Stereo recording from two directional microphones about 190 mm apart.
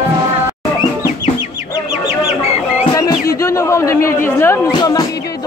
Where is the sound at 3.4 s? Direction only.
15° left (ahead or behind).